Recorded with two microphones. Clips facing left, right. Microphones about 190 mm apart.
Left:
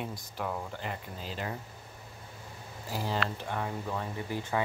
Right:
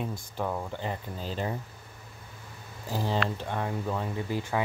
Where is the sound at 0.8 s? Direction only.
35° right (ahead or behind).